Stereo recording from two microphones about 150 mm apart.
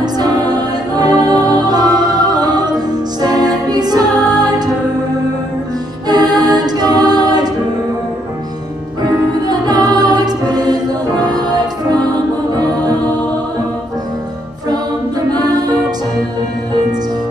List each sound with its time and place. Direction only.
0.0 s music: 25° right (ahead or behind)
3.2 s music: 25° right (ahead or behind)
6.0 s music: 25° right (ahead or behind)
9.0 s music: 25° right (ahead or behind)
15.4 s music: 25° right (ahead or behind)